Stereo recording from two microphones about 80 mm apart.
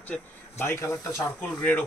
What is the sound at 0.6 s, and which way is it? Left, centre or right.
Speech, left.